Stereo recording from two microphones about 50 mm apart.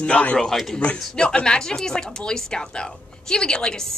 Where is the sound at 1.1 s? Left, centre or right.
Centre.